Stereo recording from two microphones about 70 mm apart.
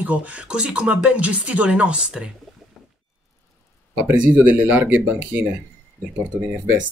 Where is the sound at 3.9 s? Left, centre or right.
Right.